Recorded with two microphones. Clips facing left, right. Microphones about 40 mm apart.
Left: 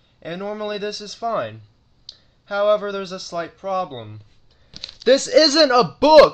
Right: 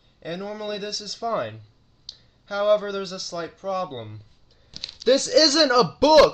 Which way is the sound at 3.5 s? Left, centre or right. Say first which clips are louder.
Left 3 dB; centre.